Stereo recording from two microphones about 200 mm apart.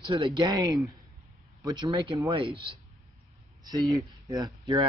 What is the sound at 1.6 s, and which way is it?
Speech, 15° right (ahead or behind).